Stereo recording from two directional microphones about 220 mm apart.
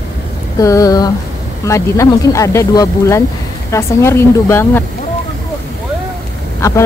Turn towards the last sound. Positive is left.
turn(degrees=15)  # may be behind; listen again after turning